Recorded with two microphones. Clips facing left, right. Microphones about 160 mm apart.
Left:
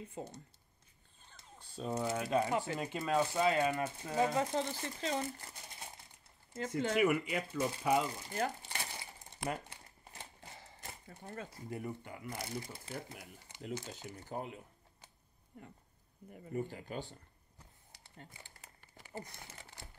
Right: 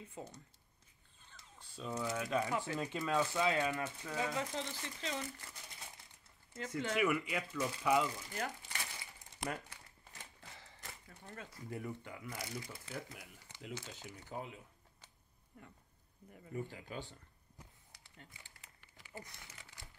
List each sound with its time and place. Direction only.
0.1 s speech: 35° left (ahead or behind)
1.9 s speech: 30° left (ahead or behind)
3.4 s speech: 45° left (ahead or behind)
7.5 s speech: 30° left (ahead or behind)
8.2 s crumpling: 35° left (ahead or behind)
9.5 s speech: 25° left (ahead or behind)
16.4 s speech: 35° left (ahead or behind)
18.1 s crumpling: 40° left (ahead or behind)